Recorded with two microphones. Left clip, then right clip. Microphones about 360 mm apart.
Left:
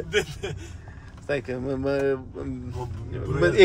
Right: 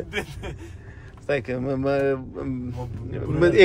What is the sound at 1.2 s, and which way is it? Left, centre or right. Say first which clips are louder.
Speech: right 3 dB; right.